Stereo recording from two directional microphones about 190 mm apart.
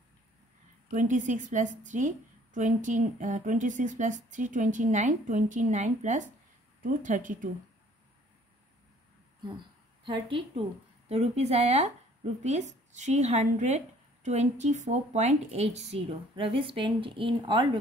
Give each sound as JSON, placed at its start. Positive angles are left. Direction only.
{"t": 0.8, "sound": "a woman's voice", "side_deg": -40}
{"t": 9.4, "sound": "a woman's voice", "side_deg": -25}